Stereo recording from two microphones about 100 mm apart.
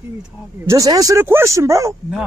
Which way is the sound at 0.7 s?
35° right (ahead or behind).